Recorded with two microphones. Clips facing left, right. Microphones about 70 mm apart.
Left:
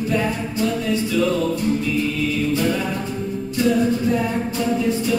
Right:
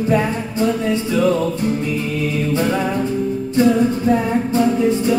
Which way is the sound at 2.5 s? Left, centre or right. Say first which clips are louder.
Right 3 dB; right.